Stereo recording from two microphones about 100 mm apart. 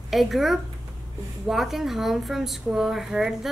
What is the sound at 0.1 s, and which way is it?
A woman's voice, centre (ahead or behind).